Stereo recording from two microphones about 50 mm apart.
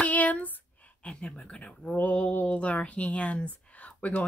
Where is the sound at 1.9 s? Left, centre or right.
Left.